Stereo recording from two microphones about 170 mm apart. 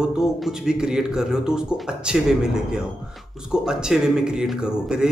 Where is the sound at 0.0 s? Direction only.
5° right (ahead or behind).